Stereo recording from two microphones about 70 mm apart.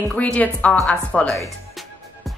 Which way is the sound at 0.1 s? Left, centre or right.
Centre.